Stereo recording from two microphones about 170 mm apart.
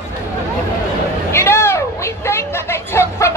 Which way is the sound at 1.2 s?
15° left (ahead or behind).